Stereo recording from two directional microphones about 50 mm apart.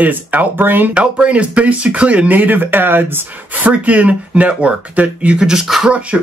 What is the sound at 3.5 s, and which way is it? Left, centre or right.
Speech, right.